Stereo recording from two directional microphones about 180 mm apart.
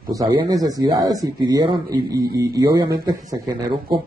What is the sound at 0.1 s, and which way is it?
Speech, 20° right (ahead or behind).